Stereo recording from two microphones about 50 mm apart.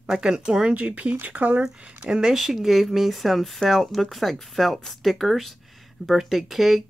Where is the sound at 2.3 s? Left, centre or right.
Centre.